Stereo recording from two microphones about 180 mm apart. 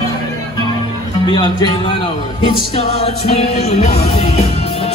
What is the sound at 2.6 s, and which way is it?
Music, 35° left (ahead or behind).